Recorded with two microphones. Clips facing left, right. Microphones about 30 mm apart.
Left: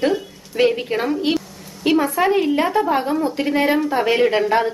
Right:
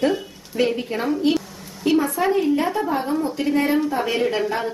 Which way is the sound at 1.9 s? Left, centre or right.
Left.